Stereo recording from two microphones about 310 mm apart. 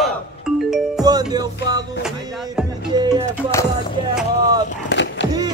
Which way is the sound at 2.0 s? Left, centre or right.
Centre.